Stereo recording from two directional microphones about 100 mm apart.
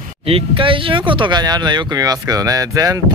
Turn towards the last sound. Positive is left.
turn(degrees=-35)  # may be behind; listen again after turning